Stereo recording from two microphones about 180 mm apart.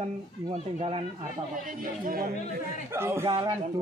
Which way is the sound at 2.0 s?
50° right (ahead or behind).